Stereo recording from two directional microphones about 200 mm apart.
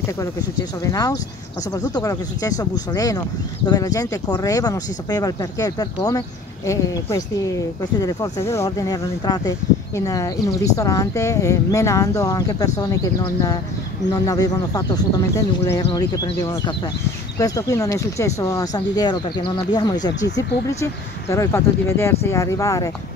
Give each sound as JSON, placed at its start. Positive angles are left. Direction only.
{"t": 0.8, "sound": "speech", "side_deg": 15}